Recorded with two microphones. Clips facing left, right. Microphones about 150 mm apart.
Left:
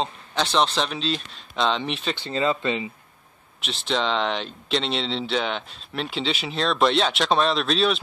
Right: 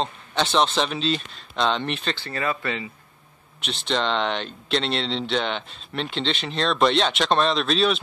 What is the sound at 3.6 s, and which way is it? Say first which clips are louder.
Speech: even; centre (ahead or behind).